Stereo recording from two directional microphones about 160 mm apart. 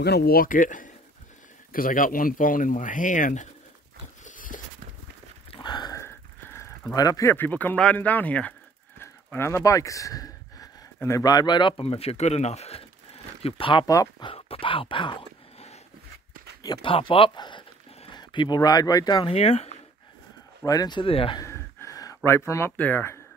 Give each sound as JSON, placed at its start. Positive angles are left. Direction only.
{"t": 0.0, "sound": "speech", "side_deg": 80}
{"t": 4.2, "sound": "a sound", "side_deg": 55}
{"t": 5.5, "sound": "speech", "side_deg": 30}
{"t": 14.3, "sound": "a sound", "side_deg": 35}
{"t": 16.6, "sound": "speech", "side_deg": 30}
{"t": 19.2, "sound": "speech", "side_deg": 40}
{"t": 20.6, "sound": "speech", "side_deg": 25}
{"t": 21.4, "sound": "gasp", "side_deg": 15}
{"t": 22.5, "sound": "speech", "side_deg": 15}